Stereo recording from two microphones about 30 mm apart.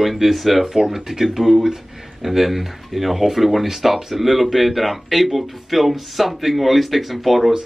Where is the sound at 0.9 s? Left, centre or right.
Centre.